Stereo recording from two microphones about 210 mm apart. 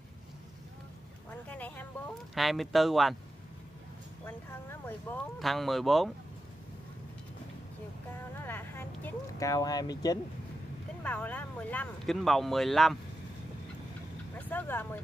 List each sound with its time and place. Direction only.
1.5 s speech: 10° left (ahead or behind)
4.3 s speech: 10° left (ahead or behind)
8.4 s speech: 10° left (ahead or behind)
11.1 s speech: 5° left (ahead or behind)
14.5 s speech: 10° left (ahead or behind)